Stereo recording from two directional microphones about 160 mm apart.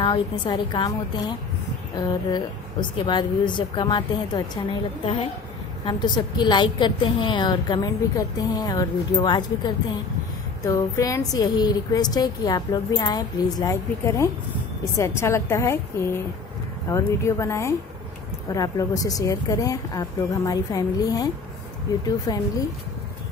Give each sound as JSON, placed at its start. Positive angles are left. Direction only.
{"t": 0.0, "sound": "a woman's voice", "side_deg": 30}
{"t": 10.6, "sound": "a woman's voice", "side_deg": 20}